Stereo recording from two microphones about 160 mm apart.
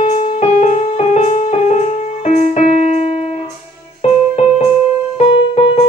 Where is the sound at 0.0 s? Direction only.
45° left (ahead or behind).